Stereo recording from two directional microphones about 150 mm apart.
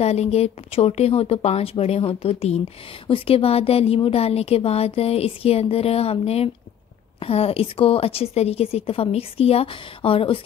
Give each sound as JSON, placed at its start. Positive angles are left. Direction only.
{"t": 0.0, "sound": "speech", "side_deg": 45}